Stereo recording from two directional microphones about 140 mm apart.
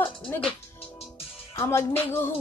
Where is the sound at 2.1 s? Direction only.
15° left (ahead or behind).